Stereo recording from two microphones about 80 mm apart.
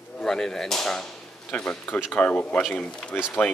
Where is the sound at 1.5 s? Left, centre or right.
Centre.